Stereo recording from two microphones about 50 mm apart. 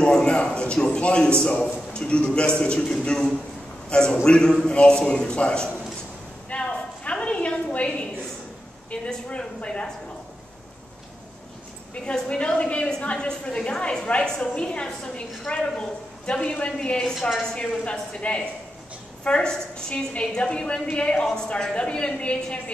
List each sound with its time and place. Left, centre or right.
0.0 s a man's voice: centre
6.5 s a sound: left
8.9 s a woman's voice: left
11.9 s a woman's voice: centre